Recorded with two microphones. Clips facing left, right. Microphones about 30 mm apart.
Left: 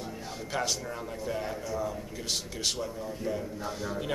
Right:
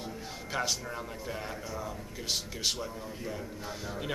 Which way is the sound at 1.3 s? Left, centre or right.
Centre.